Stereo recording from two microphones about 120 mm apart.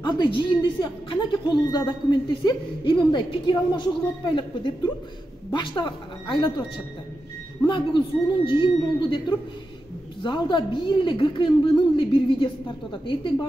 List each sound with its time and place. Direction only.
0.0 s a woman's voice: 40° left (ahead or behind)
7.6 s a woman's voice: 40° left (ahead or behind)